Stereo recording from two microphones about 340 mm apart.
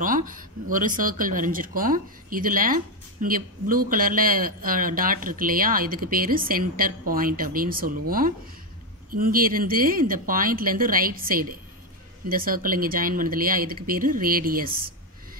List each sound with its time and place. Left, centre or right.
0.0 s speech: right